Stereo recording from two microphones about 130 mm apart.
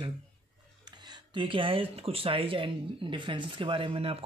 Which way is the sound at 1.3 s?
40° right (ahead or behind).